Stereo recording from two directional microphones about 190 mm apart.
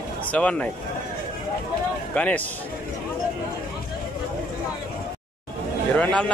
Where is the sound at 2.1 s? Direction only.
5° left (ahead or behind).